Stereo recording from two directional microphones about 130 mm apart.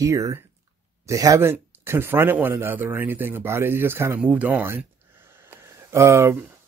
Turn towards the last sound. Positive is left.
turn(degrees=-20)  # may be behind; listen again after turning